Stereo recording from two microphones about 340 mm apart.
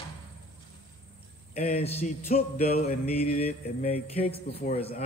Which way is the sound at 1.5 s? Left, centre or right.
Centre.